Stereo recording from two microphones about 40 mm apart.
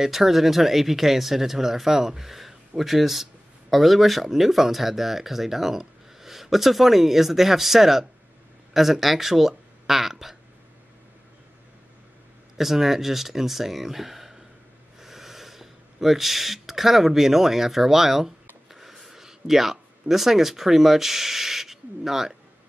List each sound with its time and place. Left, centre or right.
0.0 s speech: centre
12.5 s speech: centre